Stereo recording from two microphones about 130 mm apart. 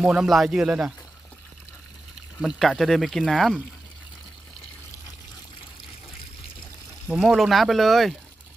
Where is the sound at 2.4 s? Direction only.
Centre (ahead or behind).